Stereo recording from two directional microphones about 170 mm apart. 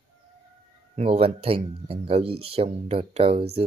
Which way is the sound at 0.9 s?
35° right (ahead or behind).